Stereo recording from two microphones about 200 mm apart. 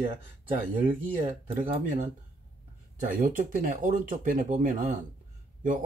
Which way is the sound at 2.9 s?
40° right (ahead or behind).